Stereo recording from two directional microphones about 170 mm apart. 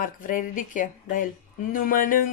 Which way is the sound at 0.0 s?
50° left (ahead or behind).